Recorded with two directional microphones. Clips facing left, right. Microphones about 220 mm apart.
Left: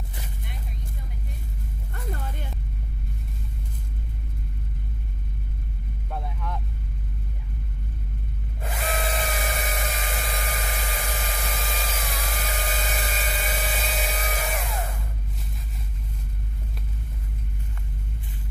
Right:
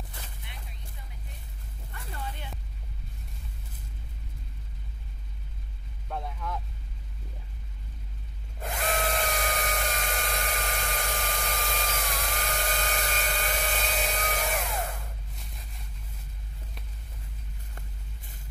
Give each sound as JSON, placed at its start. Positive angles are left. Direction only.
{"t": 2.1, "sound": "a sound", "side_deg": 45}
{"t": 6.0, "sound": "vehicle", "side_deg": 0}
{"t": 8.6, "sound": "drill", "side_deg": 5}